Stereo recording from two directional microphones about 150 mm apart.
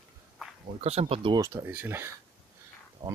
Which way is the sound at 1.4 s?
20° right (ahead or behind).